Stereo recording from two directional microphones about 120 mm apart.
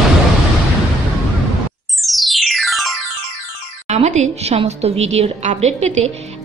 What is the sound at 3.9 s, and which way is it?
A woman's voice, 85° right.